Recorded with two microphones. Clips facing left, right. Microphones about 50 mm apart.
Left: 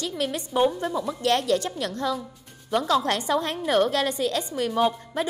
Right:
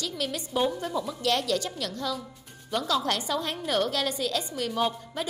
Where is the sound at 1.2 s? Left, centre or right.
Left.